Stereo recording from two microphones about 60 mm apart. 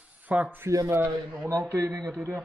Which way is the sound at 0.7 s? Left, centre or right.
Right.